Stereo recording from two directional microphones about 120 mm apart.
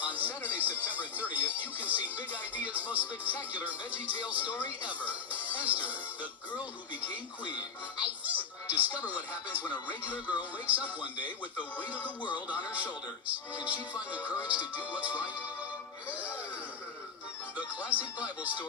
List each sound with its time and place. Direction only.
0.0 s music: 15° right (ahead or behind)
4.8 s speech: 10° right (ahead or behind)
8.0 s speech: 10° right (ahead or behind)
10.7 s speech: 10° right (ahead or behind)
13.6 s speech: 10° right (ahead or behind)
14.2 s speech: 25° left (ahead or behind)
14.9 s speech: 10° right (ahead or behind)
16.1 s music: 10° right (ahead or behind)
17.6 s music: 10° right (ahead or behind)
18.4 s speech: 10° right (ahead or behind)